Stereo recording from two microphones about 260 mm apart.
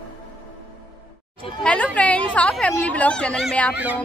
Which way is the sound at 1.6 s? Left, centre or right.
Centre.